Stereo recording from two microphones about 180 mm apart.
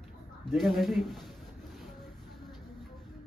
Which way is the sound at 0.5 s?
Centre (ahead or behind).